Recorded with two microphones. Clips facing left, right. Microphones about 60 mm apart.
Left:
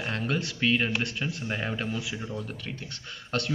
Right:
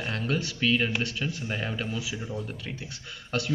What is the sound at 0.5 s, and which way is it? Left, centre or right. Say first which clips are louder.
A man's voice: even; centre.